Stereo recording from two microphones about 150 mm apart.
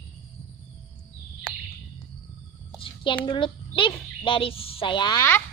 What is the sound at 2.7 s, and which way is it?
Speech, 35° left (ahead or behind).